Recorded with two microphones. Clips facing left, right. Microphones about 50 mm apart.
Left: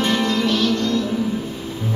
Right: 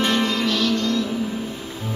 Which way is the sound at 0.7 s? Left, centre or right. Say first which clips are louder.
Left 2 dB; left.